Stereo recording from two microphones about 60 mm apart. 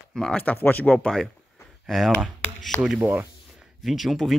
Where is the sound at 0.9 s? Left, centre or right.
Centre.